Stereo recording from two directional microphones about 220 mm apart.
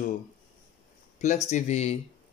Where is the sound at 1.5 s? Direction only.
30° left (ahead or behind).